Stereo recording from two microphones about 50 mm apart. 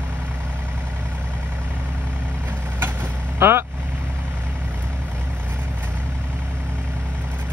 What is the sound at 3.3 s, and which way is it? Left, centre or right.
Vehicle, right.